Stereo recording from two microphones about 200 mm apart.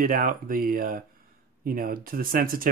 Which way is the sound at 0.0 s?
45° right (ahead or behind).